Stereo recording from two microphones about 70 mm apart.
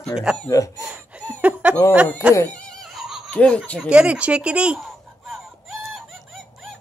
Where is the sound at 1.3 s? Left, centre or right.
Right.